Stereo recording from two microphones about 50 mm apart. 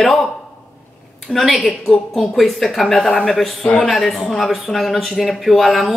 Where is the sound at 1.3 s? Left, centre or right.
Left.